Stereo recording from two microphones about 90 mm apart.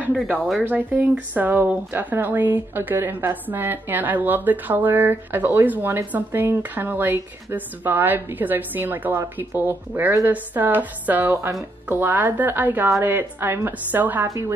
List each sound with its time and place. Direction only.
0.7 s speech: 15° right (ahead or behind)